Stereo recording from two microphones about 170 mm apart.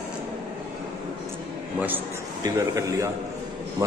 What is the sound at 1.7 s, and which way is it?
A man's voice, 10° right (ahead or behind).